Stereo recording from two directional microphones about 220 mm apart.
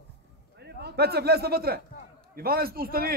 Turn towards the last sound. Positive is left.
turn(degrees=-45)  # may be behind; listen again after turning